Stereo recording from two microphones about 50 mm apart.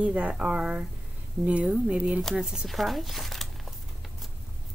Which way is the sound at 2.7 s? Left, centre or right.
Centre.